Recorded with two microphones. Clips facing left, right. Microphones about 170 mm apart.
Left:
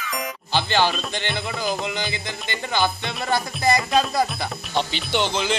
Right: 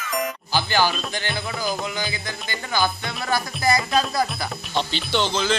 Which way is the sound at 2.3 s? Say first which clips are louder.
Left 1 dB; 20° left (ahead or behind).